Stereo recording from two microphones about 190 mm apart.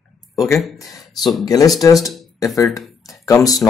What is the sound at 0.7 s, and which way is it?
Speech, 20° left (ahead or behind).